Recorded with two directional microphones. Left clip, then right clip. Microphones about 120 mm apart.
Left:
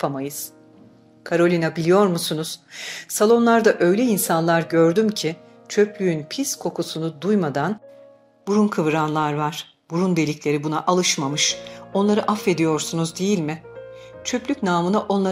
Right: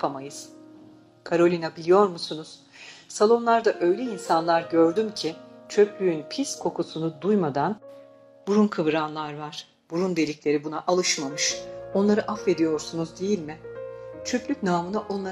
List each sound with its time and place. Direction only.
0.0 s speech: 50° left (ahead or behind)